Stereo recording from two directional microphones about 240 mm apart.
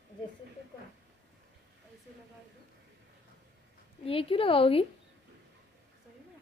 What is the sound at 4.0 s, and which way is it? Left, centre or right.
Speech, left.